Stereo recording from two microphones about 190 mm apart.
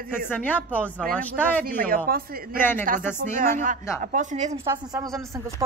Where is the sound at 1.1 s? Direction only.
10° left (ahead or behind).